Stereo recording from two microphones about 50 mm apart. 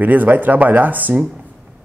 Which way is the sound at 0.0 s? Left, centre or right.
Right.